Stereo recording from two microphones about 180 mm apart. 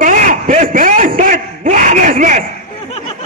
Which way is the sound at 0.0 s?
45° right (ahead or behind).